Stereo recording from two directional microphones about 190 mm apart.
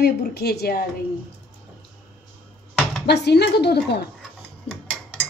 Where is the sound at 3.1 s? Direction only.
60° left (ahead or behind).